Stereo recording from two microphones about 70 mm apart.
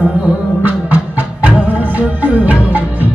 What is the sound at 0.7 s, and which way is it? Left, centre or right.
Music, right.